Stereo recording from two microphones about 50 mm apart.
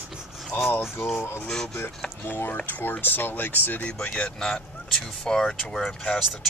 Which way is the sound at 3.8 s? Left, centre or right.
Left.